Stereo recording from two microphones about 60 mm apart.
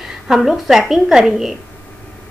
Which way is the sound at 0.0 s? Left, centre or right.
Centre.